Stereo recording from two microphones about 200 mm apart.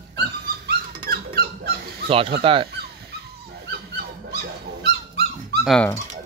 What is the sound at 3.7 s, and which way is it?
Dog, 50° right (ahead or behind).